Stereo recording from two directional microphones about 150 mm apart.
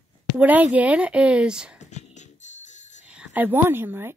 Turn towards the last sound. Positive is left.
turn(degrees=-15)  # may be behind; listen again after turning